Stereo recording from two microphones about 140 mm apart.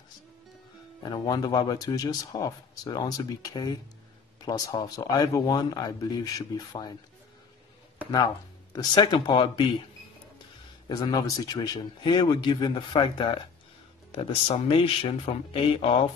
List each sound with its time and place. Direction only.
1.0 s speech: 30° left (ahead or behind)
8.7 s speech: 30° left (ahead or behind)
10.9 s speech: 30° left (ahead or behind)